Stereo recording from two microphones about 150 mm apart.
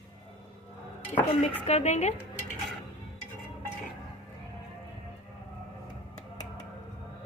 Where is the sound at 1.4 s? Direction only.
45° left (ahead or behind).